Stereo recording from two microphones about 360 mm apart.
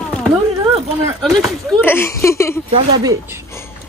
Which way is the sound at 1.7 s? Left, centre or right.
Centre.